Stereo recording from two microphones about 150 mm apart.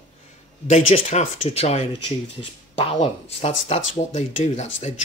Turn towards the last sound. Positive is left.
turn(degrees=45)  # may be behind; listen again after turning